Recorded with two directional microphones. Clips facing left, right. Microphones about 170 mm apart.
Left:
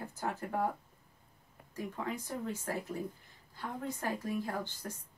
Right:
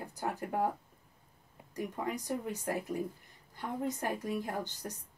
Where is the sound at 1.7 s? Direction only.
15° right (ahead or behind).